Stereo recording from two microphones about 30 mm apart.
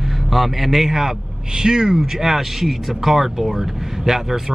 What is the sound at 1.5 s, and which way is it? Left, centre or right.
Speech, right.